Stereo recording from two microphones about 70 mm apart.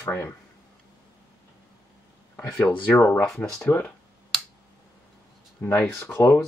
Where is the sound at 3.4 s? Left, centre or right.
Left.